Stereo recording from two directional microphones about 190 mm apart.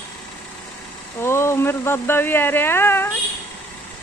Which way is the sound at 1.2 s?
15° left (ahead or behind).